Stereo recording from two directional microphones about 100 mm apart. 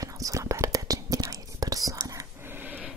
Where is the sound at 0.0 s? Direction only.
35° right (ahead or behind).